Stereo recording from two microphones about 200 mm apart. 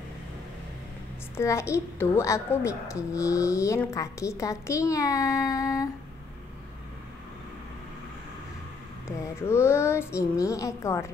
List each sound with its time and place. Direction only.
1.3 s a woman's voice: 15° left (ahead or behind)
9.0 s a woman's voice: 15° left (ahead or behind)